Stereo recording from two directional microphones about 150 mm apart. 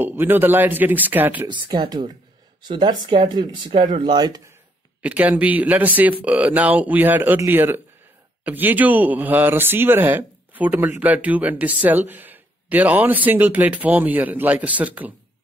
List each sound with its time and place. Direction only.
0.0 s speech: 15° right (ahead or behind)
1.5 s speech: 30° right (ahead or behind)
5.0 s speech: 10° right (ahead or behind)